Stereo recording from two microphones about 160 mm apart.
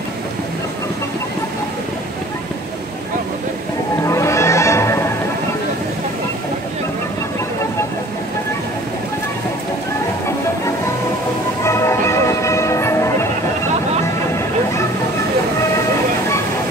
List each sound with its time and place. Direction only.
4.1 s music: 20° left (ahead or behind)
11.6 s music: 15° left (ahead or behind)